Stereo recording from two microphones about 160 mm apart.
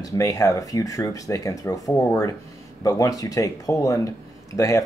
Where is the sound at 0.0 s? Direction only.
20° left (ahead or behind).